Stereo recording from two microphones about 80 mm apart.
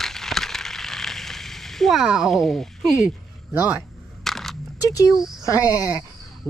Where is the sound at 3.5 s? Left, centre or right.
Right.